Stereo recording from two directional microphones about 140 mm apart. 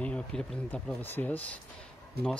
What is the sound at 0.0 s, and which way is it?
Speech, 5° left (ahead or behind).